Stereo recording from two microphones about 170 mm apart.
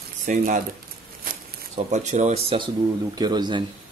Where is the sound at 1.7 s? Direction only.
45° right (ahead or behind).